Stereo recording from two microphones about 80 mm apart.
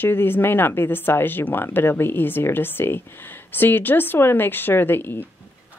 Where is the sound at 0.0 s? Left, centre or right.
Left.